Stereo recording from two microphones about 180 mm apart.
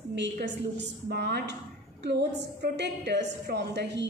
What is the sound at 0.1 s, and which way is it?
A woman's voice, 75° right (ahead or behind).